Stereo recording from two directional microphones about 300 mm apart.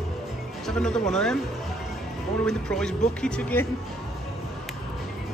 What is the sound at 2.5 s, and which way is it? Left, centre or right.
Speech, centre.